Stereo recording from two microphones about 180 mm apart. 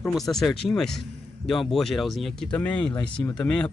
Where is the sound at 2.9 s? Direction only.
20° left (ahead or behind).